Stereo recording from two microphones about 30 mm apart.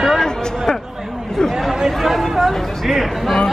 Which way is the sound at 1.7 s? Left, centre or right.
Centre.